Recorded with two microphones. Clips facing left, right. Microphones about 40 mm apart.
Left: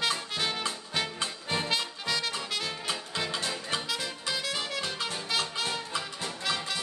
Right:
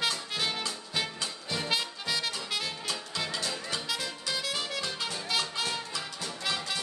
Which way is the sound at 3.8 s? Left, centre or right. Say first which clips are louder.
Left 1 dB; centre.